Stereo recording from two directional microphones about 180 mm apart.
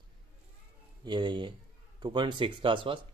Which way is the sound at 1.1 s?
25° right (ahead or behind).